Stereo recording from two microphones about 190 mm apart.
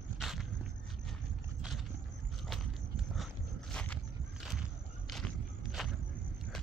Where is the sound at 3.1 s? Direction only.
Centre (ahead or behind).